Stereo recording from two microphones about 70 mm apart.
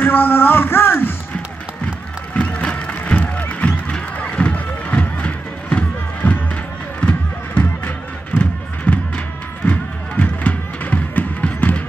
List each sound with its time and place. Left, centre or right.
0.0 s music: left
2.3 s music: centre